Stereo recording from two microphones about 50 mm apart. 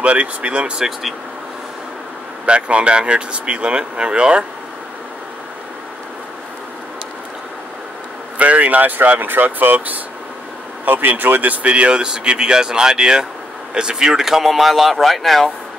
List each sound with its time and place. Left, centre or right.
0.0 s speech: right
0.7 s speech: centre
2.4 s speech: right
8.4 s speech: right; by 15.5 s centre